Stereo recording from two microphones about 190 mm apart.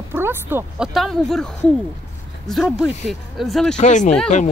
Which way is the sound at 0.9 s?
Centre (ahead or behind).